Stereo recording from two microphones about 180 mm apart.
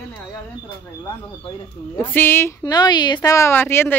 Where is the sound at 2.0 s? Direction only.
10° left (ahead or behind).